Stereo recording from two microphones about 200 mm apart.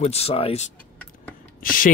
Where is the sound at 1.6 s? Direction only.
45° left (ahead or behind).